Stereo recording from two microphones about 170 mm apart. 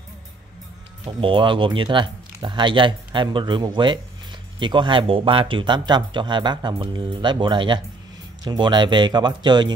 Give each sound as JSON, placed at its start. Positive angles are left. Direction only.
{"t": 1.2, "sound": "speech", "side_deg": -30}